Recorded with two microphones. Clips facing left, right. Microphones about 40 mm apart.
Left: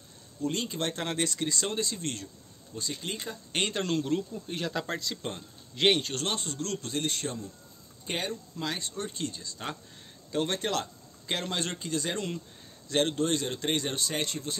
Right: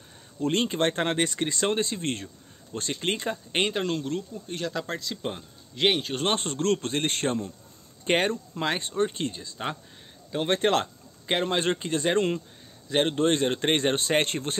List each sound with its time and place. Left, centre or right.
0.4 s speech: right
2.7 s speech: right
3.5 s speech: centre
3.8 s speech: centre
6.2 s speech: right
10.5 s speech: right
12.8 s speech: right